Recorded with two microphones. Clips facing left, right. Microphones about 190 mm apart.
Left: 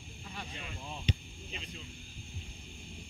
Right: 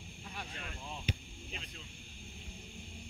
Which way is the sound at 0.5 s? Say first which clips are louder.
Left 1 dB; 5° left (ahead or behind).